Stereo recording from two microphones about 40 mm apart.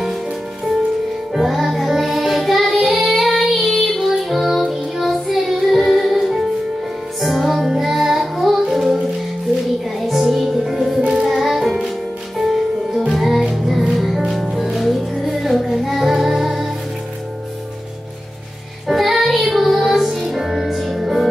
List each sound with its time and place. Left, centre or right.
1.3 s child singing: centre
7.2 s music: centre
9.9 s music: centre
11.0 s child singing: centre
11.2 s music: centre
18.9 s music: centre